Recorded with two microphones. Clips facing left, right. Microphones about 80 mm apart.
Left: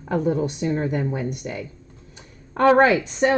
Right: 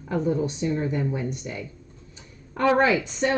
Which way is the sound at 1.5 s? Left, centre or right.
Left.